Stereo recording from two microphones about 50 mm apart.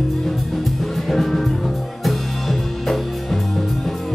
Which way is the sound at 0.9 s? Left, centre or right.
Centre.